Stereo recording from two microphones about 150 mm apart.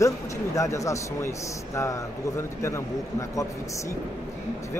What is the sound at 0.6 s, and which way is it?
A man's voice, 20° left (ahead or behind).